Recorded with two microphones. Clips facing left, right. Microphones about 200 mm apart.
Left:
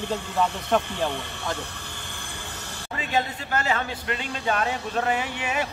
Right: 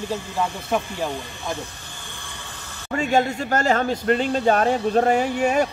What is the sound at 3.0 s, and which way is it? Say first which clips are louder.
Speech: right 7 dB; 45° right (ahead or behind).